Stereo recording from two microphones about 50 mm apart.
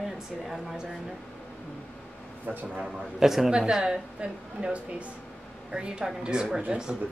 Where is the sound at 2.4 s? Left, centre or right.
Right.